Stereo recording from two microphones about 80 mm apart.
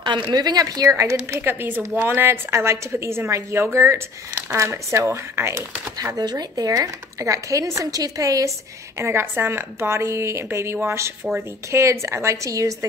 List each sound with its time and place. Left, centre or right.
0.0 s speech: right
1.4 s a woman's voice: right
6.1 s speech: right
9.0 s a woman's voice: right